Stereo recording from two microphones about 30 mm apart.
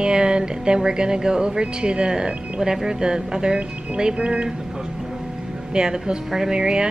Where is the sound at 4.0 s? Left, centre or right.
Right.